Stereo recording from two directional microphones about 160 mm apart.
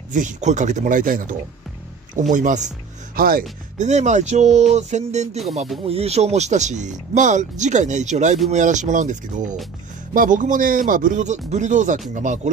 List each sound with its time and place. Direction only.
0.1 s speech: 50° right (ahead or behind)
2.3 s speech: 50° right (ahead or behind)
3.2 s speech: 65° right (ahead or behind)